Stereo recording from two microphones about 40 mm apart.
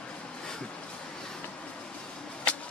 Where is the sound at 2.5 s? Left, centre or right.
Left.